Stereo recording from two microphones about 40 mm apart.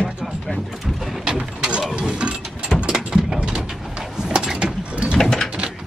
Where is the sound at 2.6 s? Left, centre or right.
Right.